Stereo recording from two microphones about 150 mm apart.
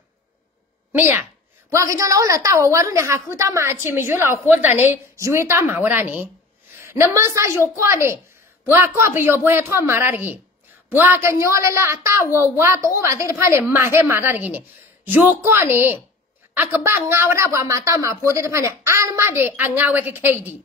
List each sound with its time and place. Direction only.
0.9 s a woman's voice: 10° right (ahead or behind)